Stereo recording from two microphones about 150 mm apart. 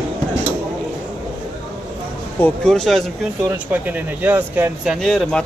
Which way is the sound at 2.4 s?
5° left (ahead or behind).